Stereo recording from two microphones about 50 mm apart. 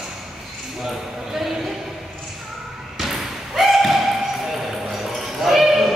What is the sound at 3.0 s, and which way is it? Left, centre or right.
Basketball bounce, centre.